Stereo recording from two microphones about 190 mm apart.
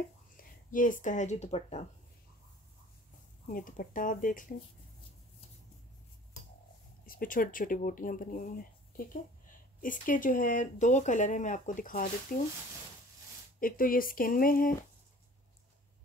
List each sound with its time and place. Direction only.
0.4 s speech: 45° left (ahead or behind)
3.4 s speech: 45° left (ahead or behind)
7.1 s speech: 45° left (ahead or behind)
13.6 s speech: 50° left (ahead or behind)